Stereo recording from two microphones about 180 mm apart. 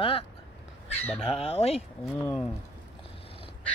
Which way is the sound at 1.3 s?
30° left (ahead or behind).